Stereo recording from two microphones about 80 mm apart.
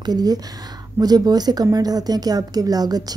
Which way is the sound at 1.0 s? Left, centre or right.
Right.